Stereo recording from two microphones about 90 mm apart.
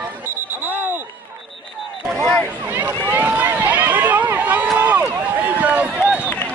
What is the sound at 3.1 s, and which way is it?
Run, 20° right (ahead or behind).